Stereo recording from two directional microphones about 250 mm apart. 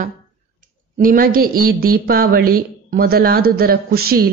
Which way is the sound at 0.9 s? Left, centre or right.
Right.